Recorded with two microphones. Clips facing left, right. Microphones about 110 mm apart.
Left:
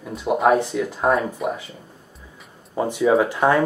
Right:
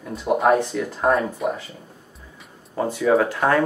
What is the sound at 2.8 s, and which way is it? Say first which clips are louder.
Speech: left 1 dB; 15° left (ahead or behind).